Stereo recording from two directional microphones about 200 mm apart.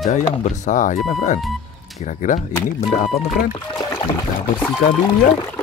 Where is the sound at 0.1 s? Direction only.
35° left (ahead or behind).